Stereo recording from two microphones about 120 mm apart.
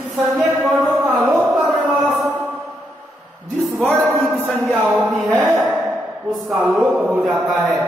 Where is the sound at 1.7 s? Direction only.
10° right (ahead or behind).